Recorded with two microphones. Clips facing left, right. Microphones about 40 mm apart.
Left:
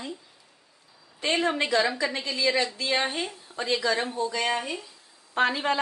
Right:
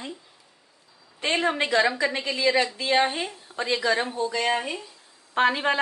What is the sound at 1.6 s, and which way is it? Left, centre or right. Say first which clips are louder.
Speech: right 2 dB; right.